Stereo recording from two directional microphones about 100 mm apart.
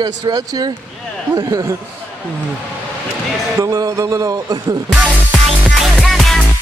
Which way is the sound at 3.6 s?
35° right (ahead or behind).